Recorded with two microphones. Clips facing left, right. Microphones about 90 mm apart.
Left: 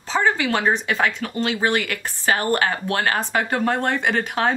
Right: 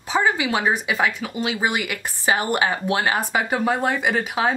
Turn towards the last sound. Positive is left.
turn(degrees=-5)  # may be behind; listen again after turning